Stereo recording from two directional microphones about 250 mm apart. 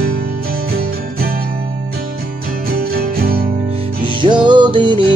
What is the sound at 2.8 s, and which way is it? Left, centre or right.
Music, right.